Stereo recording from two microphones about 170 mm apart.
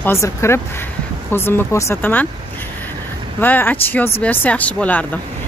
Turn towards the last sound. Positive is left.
turn(degrees=10)  # may be behind; listen again after turning